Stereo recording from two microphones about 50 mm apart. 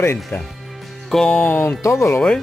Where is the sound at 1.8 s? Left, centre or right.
Left.